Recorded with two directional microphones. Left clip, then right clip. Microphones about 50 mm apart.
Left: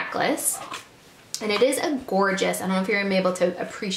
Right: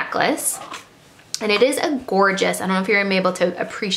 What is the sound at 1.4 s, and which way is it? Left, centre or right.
Speech, right.